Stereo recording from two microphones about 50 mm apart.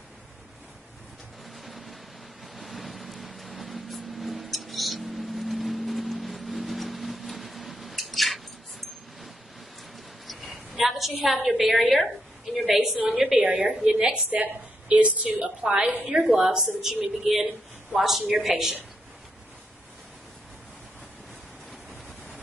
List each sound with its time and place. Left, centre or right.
1.6 s vehicle: centre
10.5 s a woman's voice: centre
13.4 s a woman's voice: right
13.7 s a woman's voice: centre
14.3 s a woman's voice: right
15.3 s a woman's voice: centre